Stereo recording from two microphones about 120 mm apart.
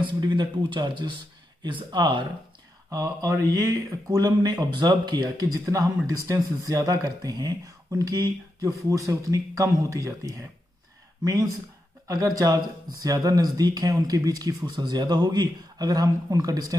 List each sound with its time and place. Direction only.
0.0 s speech: 40° right (ahead or behind)
2.9 s speech: 30° right (ahead or behind)